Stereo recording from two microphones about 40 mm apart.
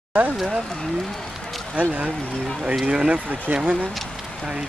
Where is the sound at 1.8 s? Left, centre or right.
Right.